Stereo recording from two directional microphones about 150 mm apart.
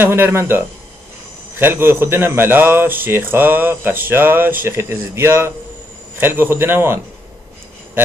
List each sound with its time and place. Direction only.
0.0 s speech: 15° right (ahead or behind)